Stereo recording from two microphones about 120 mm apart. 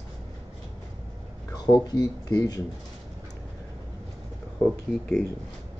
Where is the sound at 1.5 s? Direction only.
30° left (ahead or behind).